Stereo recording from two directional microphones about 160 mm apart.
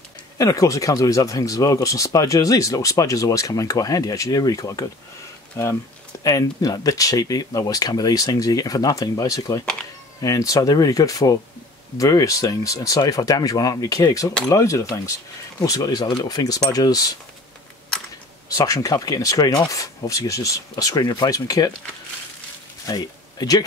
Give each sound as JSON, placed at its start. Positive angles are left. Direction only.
{"t": 0.4, "sound": "speech", "side_deg": 20}
{"t": 6.2, "sound": "speech", "side_deg": 20}
{"t": 18.5, "sound": "speech", "side_deg": 20}
{"t": 22.8, "sound": "speech", "side_deg": 25}